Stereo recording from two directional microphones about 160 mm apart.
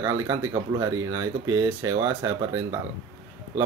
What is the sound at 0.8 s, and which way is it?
Speech, 20° right (ahead or behind).